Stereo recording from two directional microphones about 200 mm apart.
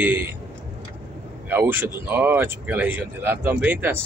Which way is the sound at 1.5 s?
10° right (ahead or behind).